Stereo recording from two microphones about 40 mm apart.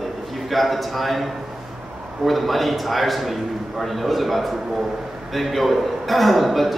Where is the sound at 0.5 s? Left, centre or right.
Centre.